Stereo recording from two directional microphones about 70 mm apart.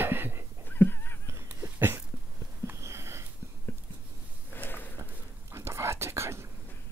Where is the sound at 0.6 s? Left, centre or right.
Left.